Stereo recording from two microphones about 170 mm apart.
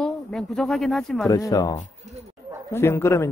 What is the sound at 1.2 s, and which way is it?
A man's voice, 20° left (ahead or behind).